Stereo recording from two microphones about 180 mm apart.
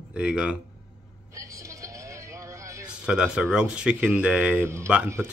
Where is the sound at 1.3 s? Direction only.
15° right (ahead or behind).